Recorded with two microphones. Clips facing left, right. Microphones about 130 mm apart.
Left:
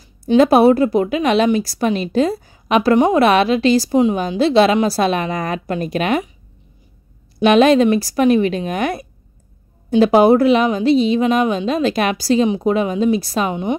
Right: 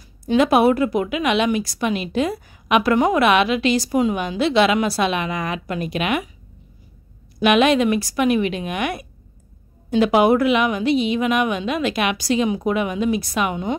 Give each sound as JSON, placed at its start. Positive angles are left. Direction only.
{"t": 0.4, "sound": "a woman's voice", "side_deg": 35}
{"t": 7.3, "sound": "a woman's voice", "side_deg": 35}